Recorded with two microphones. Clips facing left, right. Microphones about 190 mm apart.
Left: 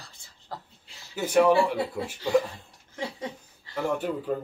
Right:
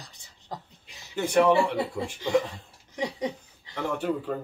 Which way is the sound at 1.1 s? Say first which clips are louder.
Left 1 dB; 5° left (ahead or behind).